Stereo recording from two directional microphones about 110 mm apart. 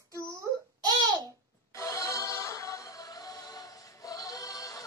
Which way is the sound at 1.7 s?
30° left (ahead or behind).